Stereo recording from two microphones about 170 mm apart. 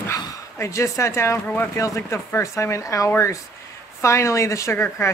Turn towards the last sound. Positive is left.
turn(degrees=15)  # may be behind; listen again after turning